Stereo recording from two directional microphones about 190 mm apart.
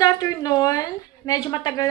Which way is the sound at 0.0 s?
20° left (ahead or behind).